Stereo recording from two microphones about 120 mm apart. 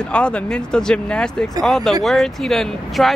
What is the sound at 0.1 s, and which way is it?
Speech, 10° left (ahead or behind).